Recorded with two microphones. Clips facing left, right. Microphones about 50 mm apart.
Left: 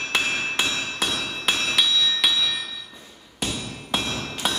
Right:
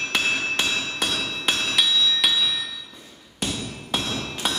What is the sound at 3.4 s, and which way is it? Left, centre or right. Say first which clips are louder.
Hammer: even; centre.